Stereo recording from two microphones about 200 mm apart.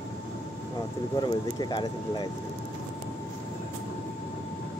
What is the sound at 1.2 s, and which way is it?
Speech, 20° left (ahead or behind).